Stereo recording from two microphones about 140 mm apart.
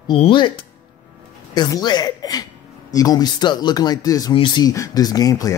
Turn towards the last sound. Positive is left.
turn(degrees=25)  # may be behind; listen again after turning